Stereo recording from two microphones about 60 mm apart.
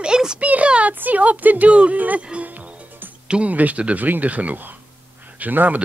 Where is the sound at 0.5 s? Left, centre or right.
Right.